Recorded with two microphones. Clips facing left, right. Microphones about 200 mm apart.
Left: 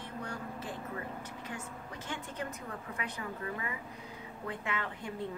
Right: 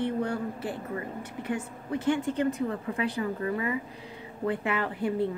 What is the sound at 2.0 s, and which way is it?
Speech, 30° right (ahead or behind).